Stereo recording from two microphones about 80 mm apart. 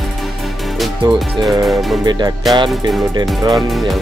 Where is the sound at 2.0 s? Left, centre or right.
Right.